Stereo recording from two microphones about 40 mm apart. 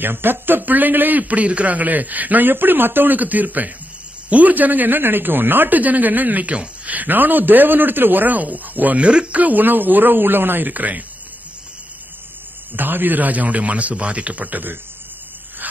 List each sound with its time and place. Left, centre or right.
0.0 s a man's voice: right
2.5 s a man's voice: right
5.8 s a man's voice: right
9.0 s speech: right
9.4 s speech: right
10.7 s speech: right
12.7 s speech: right